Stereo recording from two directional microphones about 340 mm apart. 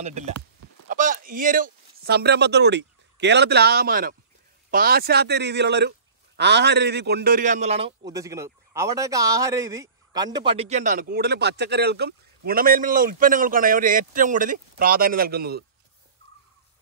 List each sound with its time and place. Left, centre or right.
0.0 s a man's voice: centre